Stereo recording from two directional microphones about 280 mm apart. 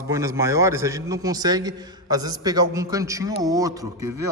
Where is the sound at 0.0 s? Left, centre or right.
Centre.